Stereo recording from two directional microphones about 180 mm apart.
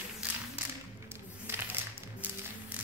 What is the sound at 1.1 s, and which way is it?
Music, 15° right (ahead or behind).